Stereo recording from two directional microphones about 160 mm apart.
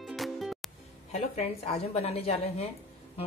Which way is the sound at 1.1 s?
45° left (ahead or behind).